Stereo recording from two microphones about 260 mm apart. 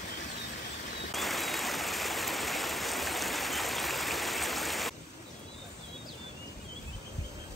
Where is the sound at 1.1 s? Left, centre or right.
Centre.